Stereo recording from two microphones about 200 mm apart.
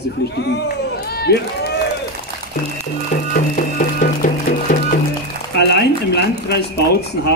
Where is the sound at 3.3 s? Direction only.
40° left (ahead or behind).